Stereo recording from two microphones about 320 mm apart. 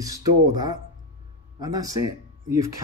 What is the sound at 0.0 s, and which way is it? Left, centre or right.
Speech, centre.